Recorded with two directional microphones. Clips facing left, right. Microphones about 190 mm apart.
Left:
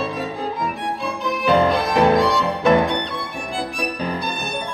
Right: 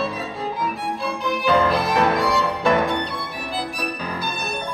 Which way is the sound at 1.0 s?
Centre (ahead or behind).